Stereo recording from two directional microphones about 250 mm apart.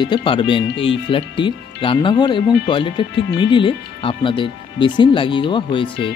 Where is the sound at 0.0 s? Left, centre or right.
Centre.